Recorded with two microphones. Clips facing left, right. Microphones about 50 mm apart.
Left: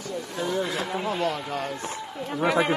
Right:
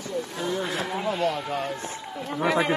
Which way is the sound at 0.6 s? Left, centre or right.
Right.